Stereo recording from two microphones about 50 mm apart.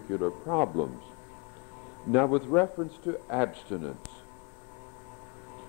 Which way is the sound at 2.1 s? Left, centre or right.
Centre.